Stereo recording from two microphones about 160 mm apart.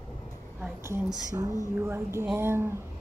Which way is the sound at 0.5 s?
10° right (ahead or behind).